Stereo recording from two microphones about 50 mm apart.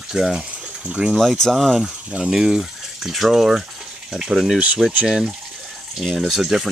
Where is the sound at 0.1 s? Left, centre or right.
Centre.